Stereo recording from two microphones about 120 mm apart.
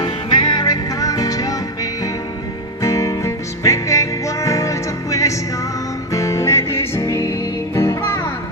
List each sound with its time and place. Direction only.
0.0 s music: 35° left (ahead or behind)
2.8 s music: 25° left (ahead or behind)